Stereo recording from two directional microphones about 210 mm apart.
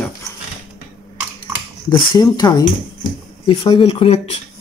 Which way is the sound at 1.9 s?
20° left (ahead or behind).